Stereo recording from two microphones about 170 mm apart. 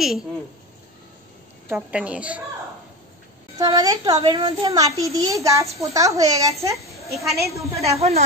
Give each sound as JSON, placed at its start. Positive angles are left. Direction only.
{"t": 1.7, "sound": "a woman's voice", "side_deg": -10}
{"t": 3.5, "sound": "speech", "side_deg": -20}
{"t": 4.6, "sound": "a woman's voice", "side_deg": -20}
{"t": 7.9, "sound": "speech", "side_deg": -40}